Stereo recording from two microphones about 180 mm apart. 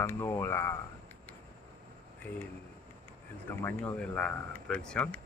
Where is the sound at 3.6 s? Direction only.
5° left (ahead or behind).